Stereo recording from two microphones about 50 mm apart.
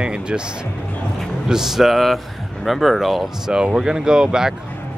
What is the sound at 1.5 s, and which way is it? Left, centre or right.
Speech, centre.